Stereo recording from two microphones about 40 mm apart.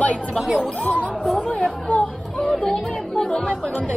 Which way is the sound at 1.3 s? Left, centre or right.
Left.